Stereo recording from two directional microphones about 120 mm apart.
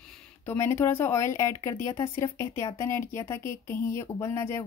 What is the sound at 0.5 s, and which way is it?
Speech, 20° left (ahead or behind).